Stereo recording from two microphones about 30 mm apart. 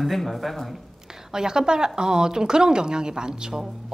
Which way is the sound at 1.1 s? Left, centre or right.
Centre.